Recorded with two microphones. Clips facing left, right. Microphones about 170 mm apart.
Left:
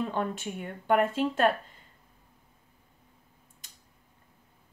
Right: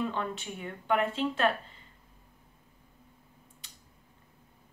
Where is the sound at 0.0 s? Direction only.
45° left (ahead or behind).